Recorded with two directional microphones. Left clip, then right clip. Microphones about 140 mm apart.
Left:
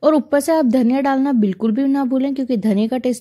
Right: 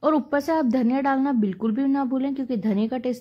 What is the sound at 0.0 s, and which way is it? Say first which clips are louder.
Speech: left 7 dB; 40° left (ahead or behind).